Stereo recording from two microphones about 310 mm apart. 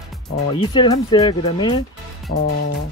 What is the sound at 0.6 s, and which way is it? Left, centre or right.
Speech, centre.